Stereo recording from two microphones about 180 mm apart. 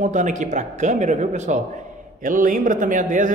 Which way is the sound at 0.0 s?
45° right (ahead or behind).